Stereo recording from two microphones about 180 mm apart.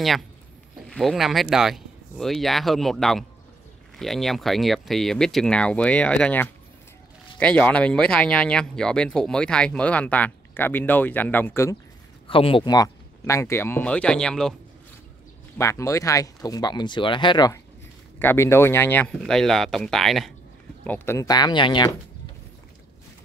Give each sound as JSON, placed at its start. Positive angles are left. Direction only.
{"t": 0.8, "sound": "speech", "side_deg": 0}
{"t": 12.3, "sound": "speech", "side_deg": 30}
{"t": 15.5, "sound": "speech", "side_deg": 15}
{"t": 18.2, "sound": "speech", "side_deg": 10}